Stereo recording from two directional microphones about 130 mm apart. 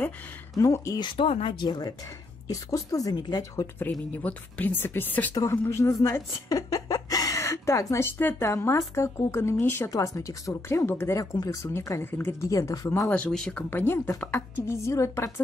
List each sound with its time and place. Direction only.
0.6 s speech: 25° left (ahead or behind)
3.9 s speech: 10° left (ahead or behind)
5.3 s speech: 25° left (ahead or behind)
13.1 s speech: 5° left (ahead or behind)